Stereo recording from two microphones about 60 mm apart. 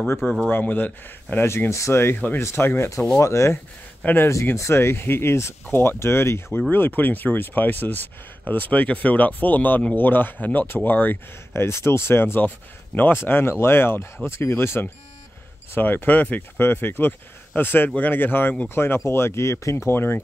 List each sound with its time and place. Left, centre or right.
0.5 s speech: left
1.4 s speech: left
2.1 s speech: left
2.4 s speech: left
3.2 s speech: left
4.0 s speech: left
4.6 s speech: left
7.0 s speech: left
11.5 s speech: left
19.0 s speech: left